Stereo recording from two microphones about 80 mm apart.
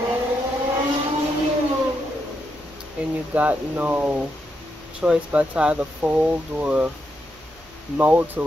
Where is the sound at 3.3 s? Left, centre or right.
Centre.